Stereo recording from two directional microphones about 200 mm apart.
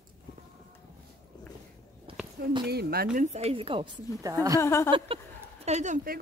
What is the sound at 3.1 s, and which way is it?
A woman's voice, 30° right (ahead or behind).